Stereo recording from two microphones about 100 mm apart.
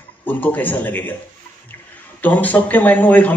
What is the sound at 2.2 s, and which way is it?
A man's voice, 15° left (ahead or behind).